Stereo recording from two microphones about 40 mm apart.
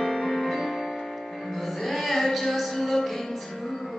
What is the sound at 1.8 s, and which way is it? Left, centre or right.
Music, centre.